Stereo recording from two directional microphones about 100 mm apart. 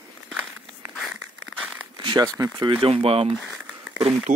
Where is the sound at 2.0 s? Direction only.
40° right (ahead or behind).